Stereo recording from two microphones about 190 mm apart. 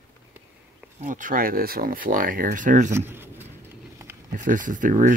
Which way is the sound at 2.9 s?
10° right (ahead or behind).